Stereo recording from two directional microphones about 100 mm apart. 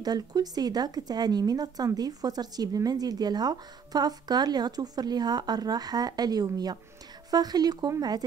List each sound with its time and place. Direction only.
0.0 s speech: 40° right (ahead or behind)